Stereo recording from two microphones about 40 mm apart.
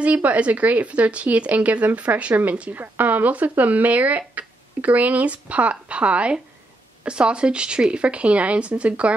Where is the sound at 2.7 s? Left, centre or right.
Right.